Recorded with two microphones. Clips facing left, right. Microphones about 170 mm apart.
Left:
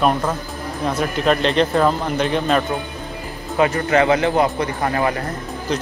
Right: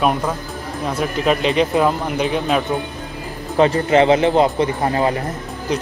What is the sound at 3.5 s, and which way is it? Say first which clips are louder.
Speech: right 3 dB; 30° right (ahead or behind).